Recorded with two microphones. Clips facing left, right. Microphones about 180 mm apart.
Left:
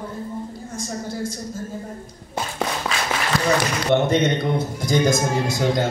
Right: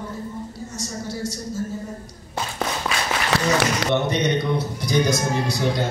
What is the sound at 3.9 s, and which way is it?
A man's voice, 50° left (ahead or behind).